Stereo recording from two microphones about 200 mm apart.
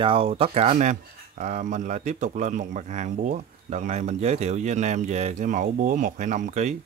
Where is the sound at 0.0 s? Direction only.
30° right (ahead or behind).